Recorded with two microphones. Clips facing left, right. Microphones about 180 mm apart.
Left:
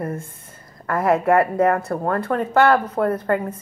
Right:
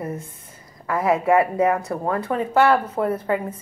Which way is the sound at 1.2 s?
5° right (ahead or behind).